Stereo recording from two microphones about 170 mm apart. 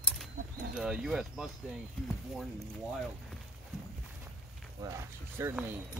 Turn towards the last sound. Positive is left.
turn(degrees=-15)  # may be behind; listen again after turning